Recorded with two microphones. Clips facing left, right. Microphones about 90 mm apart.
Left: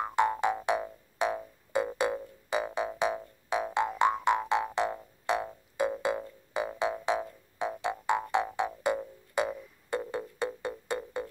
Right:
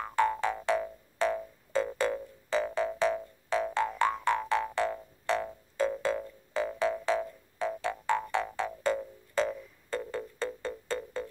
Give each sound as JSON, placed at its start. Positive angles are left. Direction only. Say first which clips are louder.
{"t": 0.0, "sound": "music", "louder": "left 1 dB", "side_deg": 20}